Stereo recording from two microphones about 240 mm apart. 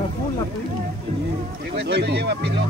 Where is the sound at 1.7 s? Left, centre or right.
Right.